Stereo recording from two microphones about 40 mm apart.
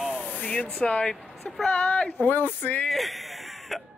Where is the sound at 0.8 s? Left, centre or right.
Left.